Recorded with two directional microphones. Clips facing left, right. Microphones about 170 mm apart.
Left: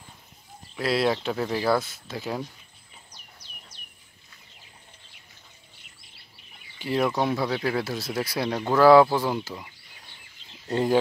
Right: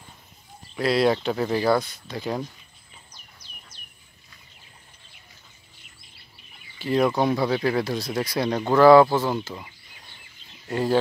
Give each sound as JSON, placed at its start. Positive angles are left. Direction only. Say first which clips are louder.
{"t": 0.7, "sound": "speech", "louder": "right 3 dB", "side_deg": 0}
{"t": 6.8, "sound": "speech", "louder": "right 3 dB", "side_deg": 5}
{"t": 10.7, "sound": "speech", "louder": "even", "side_deg": 20}